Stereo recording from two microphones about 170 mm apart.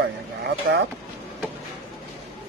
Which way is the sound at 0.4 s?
90° right.